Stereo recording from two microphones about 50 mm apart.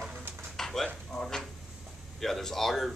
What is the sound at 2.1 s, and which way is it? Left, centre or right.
Speech, centre.